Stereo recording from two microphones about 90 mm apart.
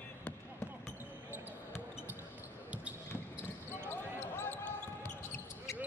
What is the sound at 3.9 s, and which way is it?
Basketball bounce, 25° left (ahead or behind).